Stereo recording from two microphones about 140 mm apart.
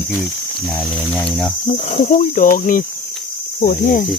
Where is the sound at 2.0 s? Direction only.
70° left (ahead or behind).